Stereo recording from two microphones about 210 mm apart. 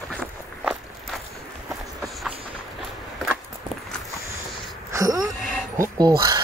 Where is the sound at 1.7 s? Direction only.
Centre (ahead or behind).